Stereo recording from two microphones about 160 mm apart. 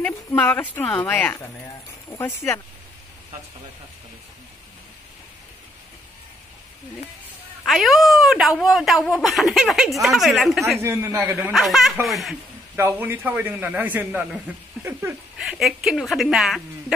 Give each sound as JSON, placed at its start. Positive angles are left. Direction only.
{"t": 0.0, "sound": "speech", "side_deg": 10}
{"t": 7.6, "sound": "speech", "side_deg": 0}
{"t": 10.8, "sound": "a man's voice", "side_deg": -15}
{"t": 11.5, "sound": "speech", "side_deg": 0}
{"t": 12.7, "sound": "a man's voice", "side_deg": -15}
{"t": 15.4, "sound": "speech", "side_deg": 0}